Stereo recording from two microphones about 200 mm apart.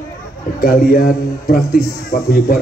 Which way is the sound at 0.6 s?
45° left (ahead or behind).